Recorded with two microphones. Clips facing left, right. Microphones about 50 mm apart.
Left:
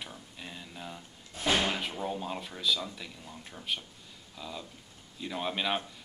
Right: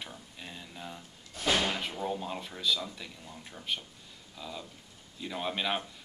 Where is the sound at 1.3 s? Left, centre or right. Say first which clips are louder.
Left 1 dB; left.